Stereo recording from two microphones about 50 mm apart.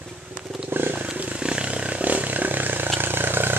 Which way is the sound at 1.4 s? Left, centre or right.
Centre.